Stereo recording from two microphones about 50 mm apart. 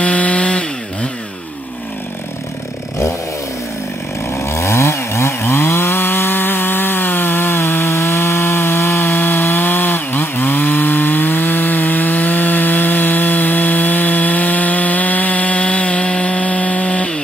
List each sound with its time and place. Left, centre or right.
0.0 s chainsaw: left
4.4 s chainsaw: left